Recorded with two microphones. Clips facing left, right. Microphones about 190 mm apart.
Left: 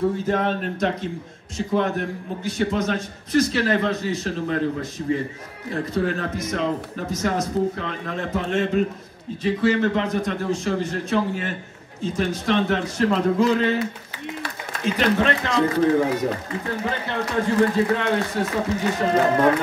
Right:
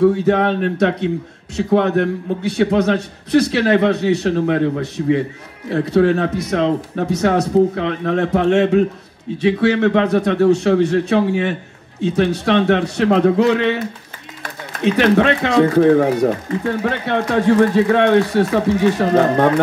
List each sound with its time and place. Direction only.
0.0 s a man's voice: 70° right (ahead or behind)